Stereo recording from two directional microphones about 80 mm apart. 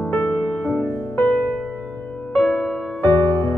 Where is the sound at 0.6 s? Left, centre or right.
Left.